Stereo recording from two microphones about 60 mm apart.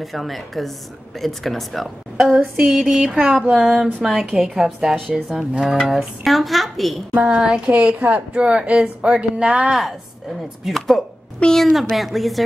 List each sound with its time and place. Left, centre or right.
0.0 s speech: centre
7.2 s speech: centre
9.7 s speech: centre